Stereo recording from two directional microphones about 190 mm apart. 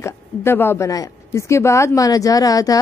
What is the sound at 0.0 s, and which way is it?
Speech, 15° left (ahead or behind).